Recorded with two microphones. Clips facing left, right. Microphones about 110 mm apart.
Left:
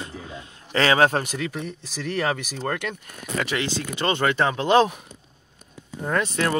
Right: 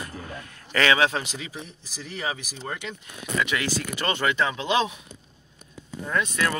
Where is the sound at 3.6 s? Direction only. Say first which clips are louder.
Left 2 dB; 25° left (ahead or behind); by 5.0 s 50° left (ahead or behind).